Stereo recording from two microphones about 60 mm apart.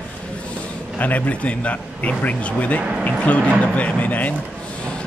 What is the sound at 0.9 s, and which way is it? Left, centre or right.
A man's voice, left.